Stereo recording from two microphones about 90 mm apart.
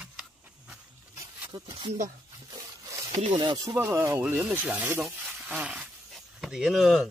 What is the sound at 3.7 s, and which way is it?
Speech, 30° right (ahead or behind).